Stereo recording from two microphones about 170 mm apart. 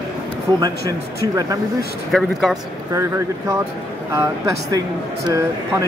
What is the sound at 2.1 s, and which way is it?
Speech, centre (ahead or behind).